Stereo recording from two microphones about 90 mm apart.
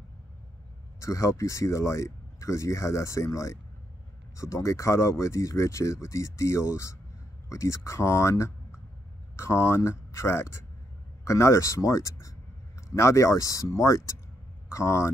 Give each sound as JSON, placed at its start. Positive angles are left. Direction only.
{"t": 0.9, "sound": "speech", "side_deg": 35}